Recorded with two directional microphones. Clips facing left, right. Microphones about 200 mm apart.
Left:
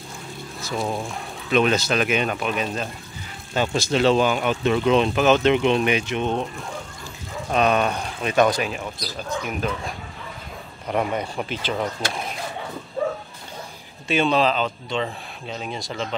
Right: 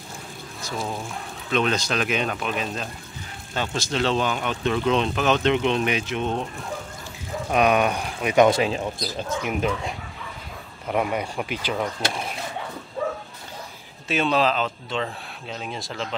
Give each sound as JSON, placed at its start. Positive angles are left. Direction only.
{"t": 1.5, "sound": "speech", "side_deg": 5}
{"t": 7.5, "sound": "speech", "side_deg": -10}
{"t": 8.5, "sound": "speech", "side_deg": -25}
{"t": 10.9, "sound": "speech", "side_deg": -5}
{"t": 14.0, "sound": "speech", "side_deg": 0}